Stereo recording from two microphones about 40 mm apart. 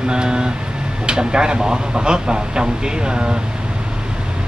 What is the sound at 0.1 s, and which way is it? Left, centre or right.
Speech, right.